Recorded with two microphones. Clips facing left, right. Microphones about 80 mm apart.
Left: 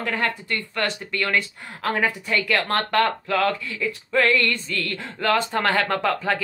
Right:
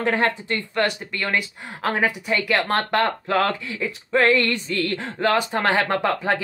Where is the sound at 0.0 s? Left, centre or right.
Right.